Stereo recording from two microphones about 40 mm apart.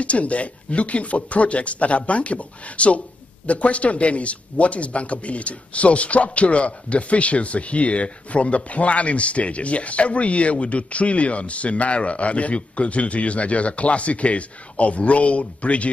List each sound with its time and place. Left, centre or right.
0.0 s speech: left